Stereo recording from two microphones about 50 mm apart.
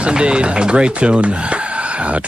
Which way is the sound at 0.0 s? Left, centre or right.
Right.